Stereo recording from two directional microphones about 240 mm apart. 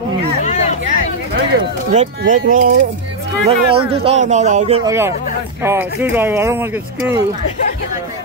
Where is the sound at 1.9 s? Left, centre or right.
Right.